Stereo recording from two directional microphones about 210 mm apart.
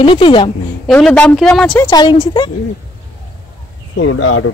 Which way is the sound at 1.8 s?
20° left (ahead or behind).